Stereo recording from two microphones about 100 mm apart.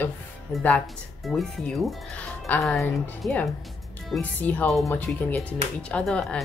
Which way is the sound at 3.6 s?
Centre (ahead or behind).